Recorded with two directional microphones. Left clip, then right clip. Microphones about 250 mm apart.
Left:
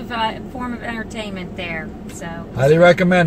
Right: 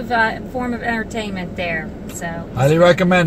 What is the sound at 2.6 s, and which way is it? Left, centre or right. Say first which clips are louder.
Speech: left 1 dB; centre.